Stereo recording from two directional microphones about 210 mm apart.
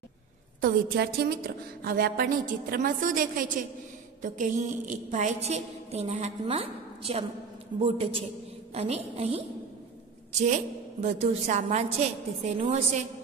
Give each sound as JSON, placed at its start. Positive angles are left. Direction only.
{"t": 0.6, "sound": "a woman's voice", "side_deg": -45}